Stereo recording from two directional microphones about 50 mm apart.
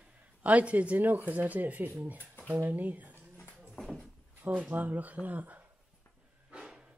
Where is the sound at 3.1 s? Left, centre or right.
Left.